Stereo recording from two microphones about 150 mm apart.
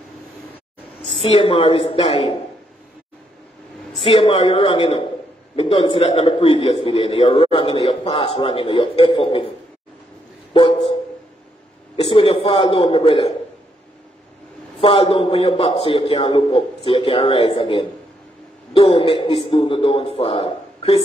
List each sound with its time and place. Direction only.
1.3 s a man's voice: 35° left (ahead or behind)
4.0 s a man's voice: 35° left (ahead or behind)
10.5 s a sound: 35° left (ahead or behind)
12.1 s a man's voice: 35° left (ahead or behind)
14.8 s a man's voice: 35° left (ahead or behind)